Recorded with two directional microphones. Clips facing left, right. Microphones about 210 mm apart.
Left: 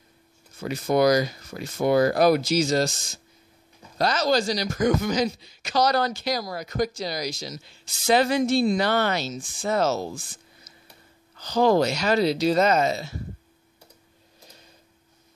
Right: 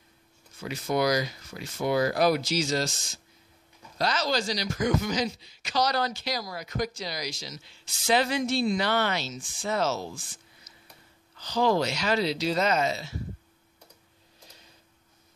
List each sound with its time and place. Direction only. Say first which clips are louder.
0.6 s a woman's voice: left 6 dB; 45° left (ahead or behind)
4.0 s a woman's voice: left 5 dB; 45° left (ahead or behind)
11.3 s a woman's voice: left 5 dB; 45° left (ahead or behind)